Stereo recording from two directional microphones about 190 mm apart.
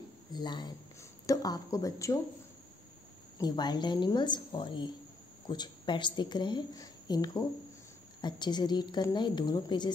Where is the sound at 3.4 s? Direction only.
20° left (ahead or behind).